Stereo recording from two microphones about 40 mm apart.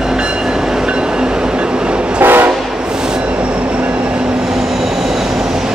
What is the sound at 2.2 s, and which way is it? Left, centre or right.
Train, right.